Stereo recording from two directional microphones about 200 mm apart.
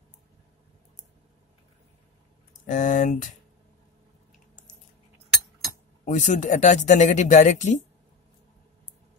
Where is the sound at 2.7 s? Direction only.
40° left (ahead or behind).